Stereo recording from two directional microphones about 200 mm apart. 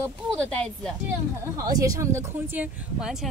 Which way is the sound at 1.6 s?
15° right (ahead or behind).